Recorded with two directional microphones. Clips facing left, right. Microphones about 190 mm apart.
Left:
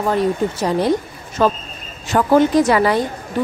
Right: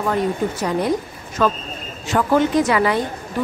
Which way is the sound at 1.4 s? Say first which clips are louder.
Left 2 dB; 30° left (ahead or behind).